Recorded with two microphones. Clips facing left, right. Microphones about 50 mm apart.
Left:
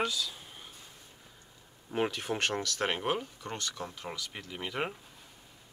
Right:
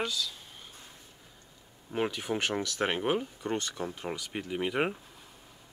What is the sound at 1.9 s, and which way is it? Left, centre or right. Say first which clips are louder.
Speech: right 1 dB; centre.